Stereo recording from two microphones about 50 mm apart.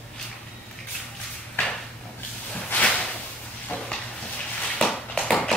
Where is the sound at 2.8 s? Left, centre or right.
Left.